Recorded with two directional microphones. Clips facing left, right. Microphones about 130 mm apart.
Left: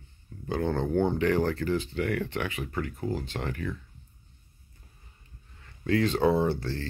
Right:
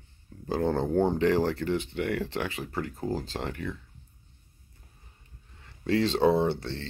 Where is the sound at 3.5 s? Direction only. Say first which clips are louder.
Left 1 dB; 20° right (ahead or behind).